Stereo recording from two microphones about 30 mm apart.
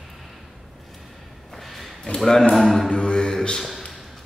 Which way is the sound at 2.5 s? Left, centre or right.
Centre.